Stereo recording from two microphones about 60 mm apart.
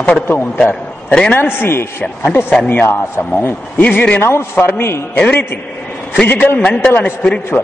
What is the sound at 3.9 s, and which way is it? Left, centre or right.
A man's voice, left.